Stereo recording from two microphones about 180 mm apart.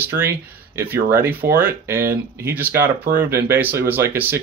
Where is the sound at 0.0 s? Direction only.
10° right (ahead or behind).